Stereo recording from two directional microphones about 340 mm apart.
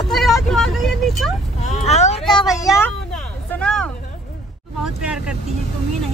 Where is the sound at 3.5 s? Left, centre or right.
Centre.